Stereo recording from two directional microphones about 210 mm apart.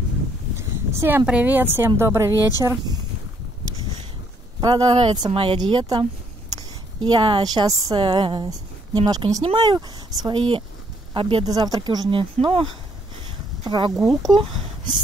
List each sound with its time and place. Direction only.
0.6 s speech: 10° right (ahead or behind)
4.6 s a woman's voice: 20° right (ahead or behind)
13.7 s speech: 20° right (ahead or behind)